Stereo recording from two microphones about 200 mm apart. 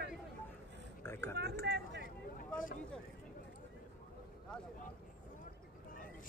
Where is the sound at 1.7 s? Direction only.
60° right (ahead or behind).